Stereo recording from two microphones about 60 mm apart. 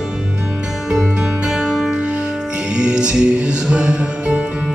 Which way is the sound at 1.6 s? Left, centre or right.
Centre.